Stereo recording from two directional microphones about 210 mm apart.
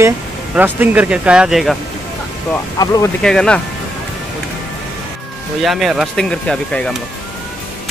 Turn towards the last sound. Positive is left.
turn(degrees=5)  # may be behind; listen again after turning